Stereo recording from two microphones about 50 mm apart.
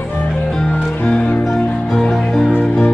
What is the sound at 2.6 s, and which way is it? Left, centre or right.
Music, left.